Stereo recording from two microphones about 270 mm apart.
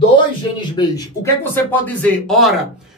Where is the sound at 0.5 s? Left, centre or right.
Centre.